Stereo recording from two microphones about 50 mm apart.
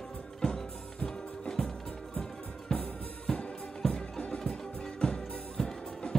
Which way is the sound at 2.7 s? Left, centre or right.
Centre.